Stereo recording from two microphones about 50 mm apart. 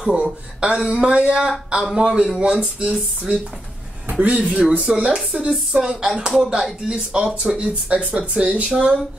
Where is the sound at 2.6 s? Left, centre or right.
Right.